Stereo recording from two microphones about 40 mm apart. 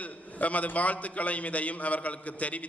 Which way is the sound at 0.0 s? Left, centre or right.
Left.